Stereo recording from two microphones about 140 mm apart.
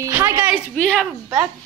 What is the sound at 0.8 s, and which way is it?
Speech, 5° left (ahead or behind).